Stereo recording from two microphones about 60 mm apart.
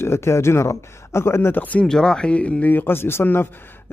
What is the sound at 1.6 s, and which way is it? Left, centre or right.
Speech, left.